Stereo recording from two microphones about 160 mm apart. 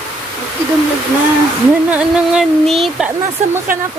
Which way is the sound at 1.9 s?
5° right (ahead or behind).